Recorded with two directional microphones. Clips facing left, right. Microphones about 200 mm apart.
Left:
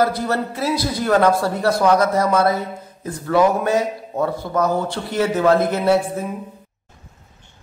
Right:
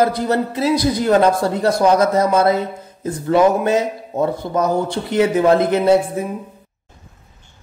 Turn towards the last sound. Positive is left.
turn(degrees=-20)  # may be behind; listen again after turning